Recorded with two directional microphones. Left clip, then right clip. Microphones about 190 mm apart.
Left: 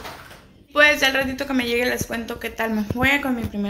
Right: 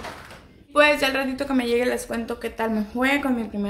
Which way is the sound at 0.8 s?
5° right (ahead or behind).